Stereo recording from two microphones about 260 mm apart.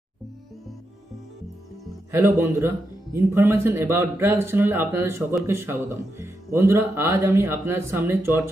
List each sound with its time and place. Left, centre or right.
2.0 s speech: centre